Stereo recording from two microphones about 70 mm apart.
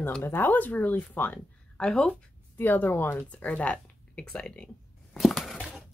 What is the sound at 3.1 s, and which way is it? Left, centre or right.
Speech, centre.